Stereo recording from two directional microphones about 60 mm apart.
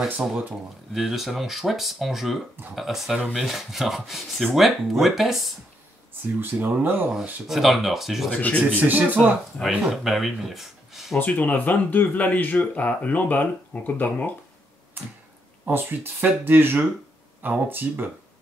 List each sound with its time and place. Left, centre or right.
0.0 s speech: centre
6.8 s speech: right
7.4 s speech: centre
8.7 s speech: right
9.6 s speech: centre
11.1 s speech: left
15.6 s speech: right